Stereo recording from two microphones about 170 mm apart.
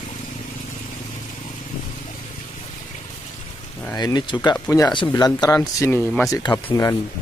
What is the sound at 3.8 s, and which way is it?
Speech, 20° left (ahead or behind).